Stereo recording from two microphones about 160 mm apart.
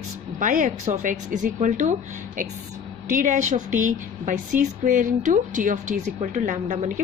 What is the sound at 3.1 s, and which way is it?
A woman's voice, 50° right (ahead or behind).